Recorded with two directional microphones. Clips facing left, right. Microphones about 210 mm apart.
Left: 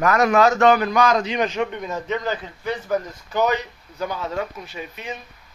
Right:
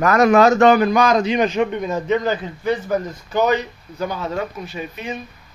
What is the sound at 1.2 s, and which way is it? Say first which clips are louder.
A man's voice: right 5 dB; 15° right (ahead or behind).